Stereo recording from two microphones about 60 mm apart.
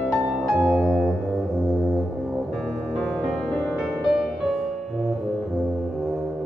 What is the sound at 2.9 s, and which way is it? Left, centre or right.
Music, centre.